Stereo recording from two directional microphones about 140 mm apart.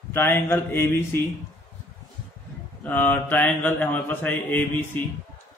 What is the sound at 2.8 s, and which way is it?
Mantra, 15° left (ahead or behind).